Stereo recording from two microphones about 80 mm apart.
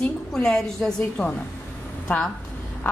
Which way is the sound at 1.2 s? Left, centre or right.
Centre.